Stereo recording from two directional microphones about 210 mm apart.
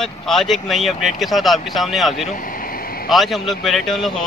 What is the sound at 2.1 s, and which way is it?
Vehicle, 40° left (ahead or behind).